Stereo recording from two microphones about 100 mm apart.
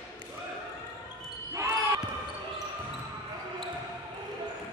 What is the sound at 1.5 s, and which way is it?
Basketball bounce, 30° right (ahead or behind).